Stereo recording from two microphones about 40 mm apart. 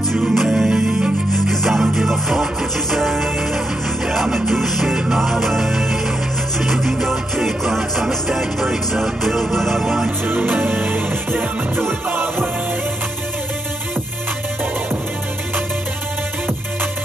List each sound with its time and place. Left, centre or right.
0.3 s music: centre
1.3 s music: centre
4.8 s music: centre
5.2 s music: centre
10.2 s music: right